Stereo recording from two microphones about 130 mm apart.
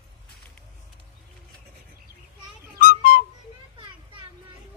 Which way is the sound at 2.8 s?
90° left.